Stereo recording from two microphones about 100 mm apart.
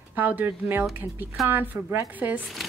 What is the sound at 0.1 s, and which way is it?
A woman's voice, 15° right (ahead or behind).